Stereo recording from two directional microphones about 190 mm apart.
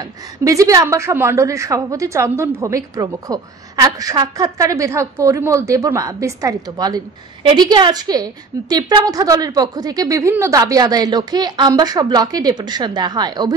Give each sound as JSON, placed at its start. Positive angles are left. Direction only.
{"t": 0.4, "sound": "a woman's voice", "side_deg": -15}